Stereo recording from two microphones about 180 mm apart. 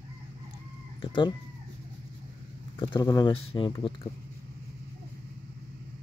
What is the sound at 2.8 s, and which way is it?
Speech, 20° left (ahead or behind).